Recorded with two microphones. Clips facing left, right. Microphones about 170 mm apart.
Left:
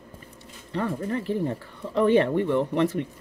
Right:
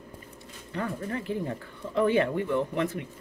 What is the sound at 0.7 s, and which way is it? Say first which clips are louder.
Speech: left 5 dB; 35° left (ahead or behind).